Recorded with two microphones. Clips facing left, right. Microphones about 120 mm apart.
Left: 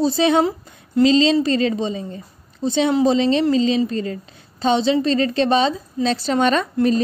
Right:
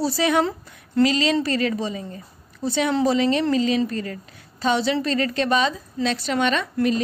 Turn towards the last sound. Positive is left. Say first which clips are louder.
# left 4 dB
turn(degrees=35)  # may be behind; listen again after turning